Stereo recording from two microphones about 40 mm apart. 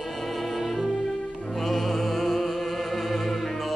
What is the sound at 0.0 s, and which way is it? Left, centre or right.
Music, centre.